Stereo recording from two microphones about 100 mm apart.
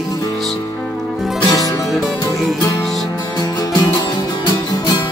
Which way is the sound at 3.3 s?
45° left (ahead or behind).